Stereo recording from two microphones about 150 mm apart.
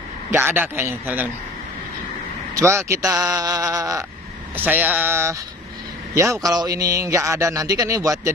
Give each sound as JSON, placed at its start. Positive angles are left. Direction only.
{"t": 0.3, "sound": "a man's voice", "side_deg": -15}
{"t": 2.5, "sound": "a man's voice", "side_deg": -20}